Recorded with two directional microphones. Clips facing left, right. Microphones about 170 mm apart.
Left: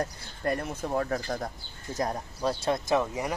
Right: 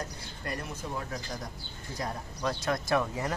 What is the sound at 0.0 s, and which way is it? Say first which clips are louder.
Speech: left 8 dB; 55° left (ahead or behind).